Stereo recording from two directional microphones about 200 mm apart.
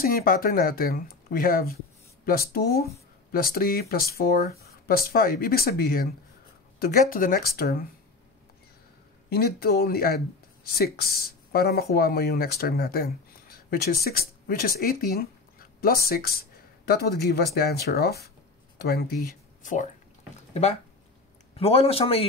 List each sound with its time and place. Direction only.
0.0 s speech: 45° left (ahead or behind)
9.3 s speech: 50° left (ahead or behind)
21.5 s a man's voice: 30° left (ahead or behind)